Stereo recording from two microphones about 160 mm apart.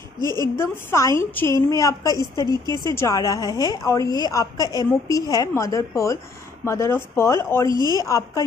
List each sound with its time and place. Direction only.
0.6 s a woman's voice: 15° left (ahead or behind)
7.7 s speech: 25° right (ahead or behind)
8.0 s a woman's voice: 20° left (ahead or behind)